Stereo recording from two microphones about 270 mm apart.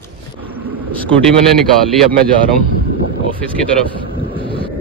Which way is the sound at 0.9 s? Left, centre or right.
Centre.